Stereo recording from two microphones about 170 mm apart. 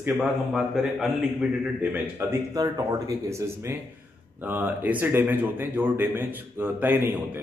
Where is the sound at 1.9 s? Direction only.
15° right (ahead or behind).